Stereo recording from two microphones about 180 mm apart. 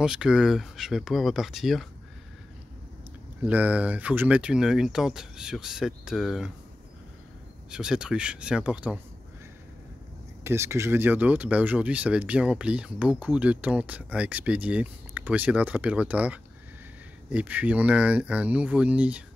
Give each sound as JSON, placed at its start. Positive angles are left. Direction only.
{"t": 0.0, "sound": "speech", "side_deg": -5}
{"t": 3.4, "sound": "speech", "side_deg": -10}
{"t": 7.7, "sound": "speech", "side_deg": -5}
{"t": 10.4, "sound": "speech", "side_deg": -15}